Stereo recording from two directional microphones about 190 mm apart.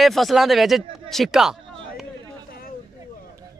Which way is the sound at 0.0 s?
Centre (ahead or behind).